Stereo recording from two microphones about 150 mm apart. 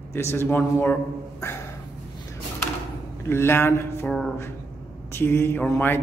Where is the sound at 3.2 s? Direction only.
15° left (ahead or behind).